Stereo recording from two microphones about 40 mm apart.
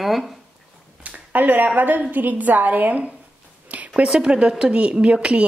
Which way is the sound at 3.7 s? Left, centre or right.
Right.